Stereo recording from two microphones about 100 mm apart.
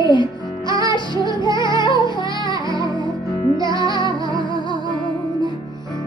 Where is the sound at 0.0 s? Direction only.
50° left (ahead or behind).